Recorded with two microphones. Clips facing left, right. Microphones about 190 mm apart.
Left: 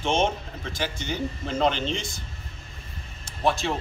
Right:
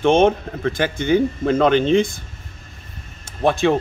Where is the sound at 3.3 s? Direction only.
55° right (ahead or behind).